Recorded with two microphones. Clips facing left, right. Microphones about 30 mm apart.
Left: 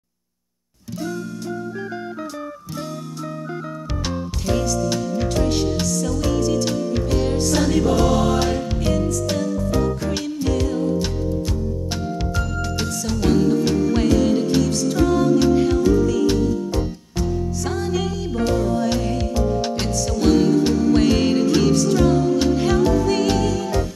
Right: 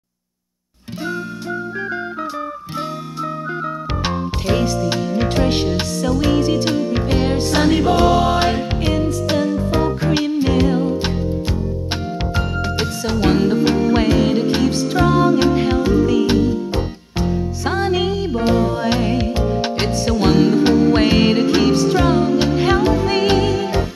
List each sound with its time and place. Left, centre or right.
4.0 s music: right
12.4 s music: right